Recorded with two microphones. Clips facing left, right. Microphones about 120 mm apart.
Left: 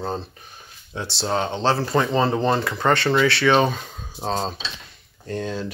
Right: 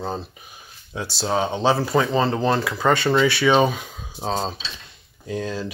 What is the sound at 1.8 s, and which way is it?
Speech, centre (ahead or behind).